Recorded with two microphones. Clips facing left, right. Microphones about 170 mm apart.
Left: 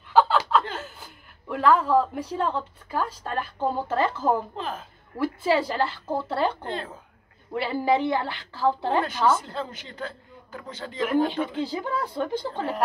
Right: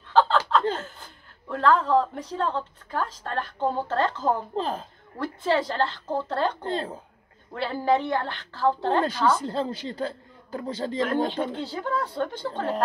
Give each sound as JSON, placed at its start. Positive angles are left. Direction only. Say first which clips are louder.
{"t": 0.1, "sound": "chuckle", "louder": "left 1 dB", "side_deg": 10}
{"t": 0.9, "sound": "speech", "louder": "left 1 dB", "side_deg": 10}
{"t": 4.6, "sound": "speech", "louder": "right 5 dB", "side_deg": -35}
{"t": 5.2, "sound": "speech", "louder": "left 2 dB", "side_deg": 10}
{"t": 6.6, "sound": "speech", "louder": "right 3 dB", "side_deg": -30}
{"t": 7.5, "sound": "speech", "louder": "left 1 dB", "side_deg": 10}
{"t": 9.4, "sound": "speech", "louder": "right 6 dB", "side_deg": -35}
{"t": 11.6, "sound": "speech", "louder": "even", "side_deg": 15}